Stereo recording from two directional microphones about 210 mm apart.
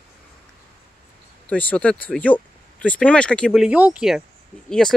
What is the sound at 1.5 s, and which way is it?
Speech, 5° left (ahead or behind).